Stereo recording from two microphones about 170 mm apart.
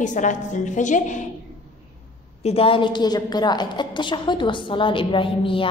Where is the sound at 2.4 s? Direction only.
35° left (ahead or behind).